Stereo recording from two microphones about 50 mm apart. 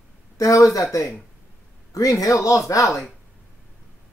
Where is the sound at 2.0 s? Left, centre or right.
Left.